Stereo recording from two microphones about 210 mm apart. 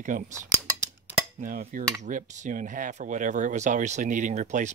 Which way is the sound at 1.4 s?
40° right (ahead or behind).